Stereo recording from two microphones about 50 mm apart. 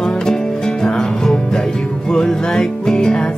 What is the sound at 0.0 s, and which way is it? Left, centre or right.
Music, centre.